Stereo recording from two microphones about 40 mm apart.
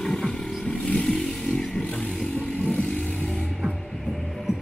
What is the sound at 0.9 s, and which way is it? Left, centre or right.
Vehicle, centre.